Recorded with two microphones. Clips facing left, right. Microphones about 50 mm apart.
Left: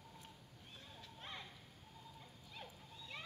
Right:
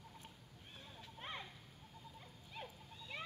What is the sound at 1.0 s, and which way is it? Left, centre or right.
Clip-clop, right.